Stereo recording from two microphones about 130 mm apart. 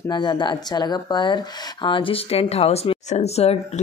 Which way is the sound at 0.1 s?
35° left (ahead or behind).